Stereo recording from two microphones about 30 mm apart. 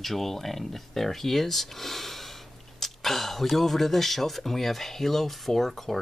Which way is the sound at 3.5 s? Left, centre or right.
Centre.